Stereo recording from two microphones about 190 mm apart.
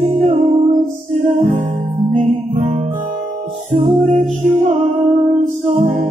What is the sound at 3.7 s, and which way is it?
Music, 45° right (ahead or behind).